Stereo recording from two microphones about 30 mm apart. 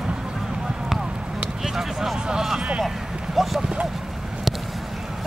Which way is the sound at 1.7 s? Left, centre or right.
Centre.